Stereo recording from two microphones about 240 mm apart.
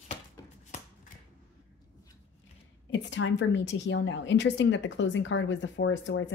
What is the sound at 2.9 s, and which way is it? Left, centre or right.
A woman's voice, left.